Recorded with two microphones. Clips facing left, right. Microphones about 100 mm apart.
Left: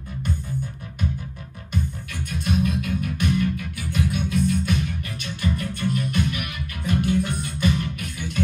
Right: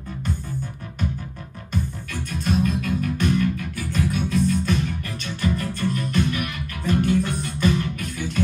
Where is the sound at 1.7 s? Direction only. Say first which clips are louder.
Right 1 dB; 45° right (ahead or behind).